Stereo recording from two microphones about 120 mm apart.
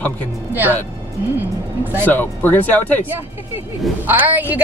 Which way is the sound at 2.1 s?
15° left (ahead or behind).